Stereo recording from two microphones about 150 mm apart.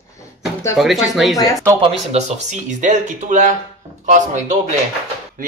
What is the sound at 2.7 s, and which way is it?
Speech, 55° right (ahead or behind).